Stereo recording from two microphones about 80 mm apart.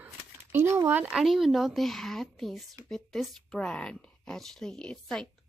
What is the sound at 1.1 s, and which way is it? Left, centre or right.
Speech, centre.